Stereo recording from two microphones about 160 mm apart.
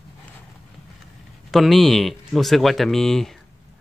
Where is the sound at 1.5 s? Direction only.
Centre (ahead or behind).